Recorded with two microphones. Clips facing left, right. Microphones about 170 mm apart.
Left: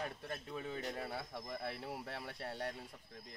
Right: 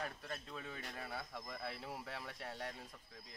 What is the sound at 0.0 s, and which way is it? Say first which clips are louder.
Speech: left 2 dB; 20° left (ahead or behind).